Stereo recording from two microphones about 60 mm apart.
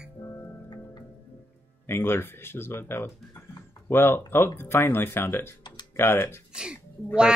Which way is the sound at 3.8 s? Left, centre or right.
Left.